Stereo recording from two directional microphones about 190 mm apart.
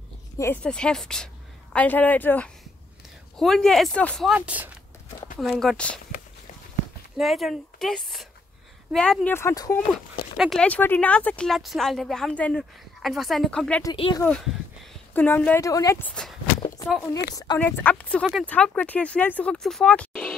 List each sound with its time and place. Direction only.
0.4 s a woman's voice: 10° left (ahead or behind)
4.4 s speech: 10° right (ahead or behind)
7.2 s speech: centre (ahead or behind); by 9.8 s 15° left (ahead or behind)
10.3 s speech: centre (ahead or behind)
13.9 s speech: 30° left (ahead or behind)
14.2 s speech: 5° left (ahead or behind)
16.5 s a sound: 25° left (ahead or behind)
17.6 s speech: 10° left (ahead or behind)